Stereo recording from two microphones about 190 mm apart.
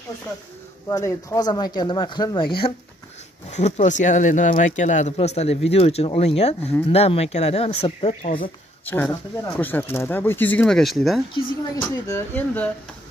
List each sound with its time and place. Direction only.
0.8 s speech: 15° left (ahead or behind)
3.4 s speech: 35° left (ahead or behind)
8.8 s speech: 10° left (ahead or behind)